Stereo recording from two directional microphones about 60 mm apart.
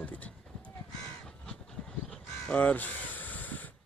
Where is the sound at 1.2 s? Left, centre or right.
Centre.